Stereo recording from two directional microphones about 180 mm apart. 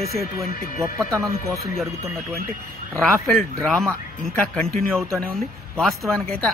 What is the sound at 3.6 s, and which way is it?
Speech, 5° left (ahead or behind).